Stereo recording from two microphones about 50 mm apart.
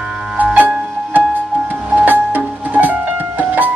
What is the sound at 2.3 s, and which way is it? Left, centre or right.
Music, right.